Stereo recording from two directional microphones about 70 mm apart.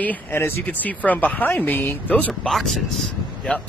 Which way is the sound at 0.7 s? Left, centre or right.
Left.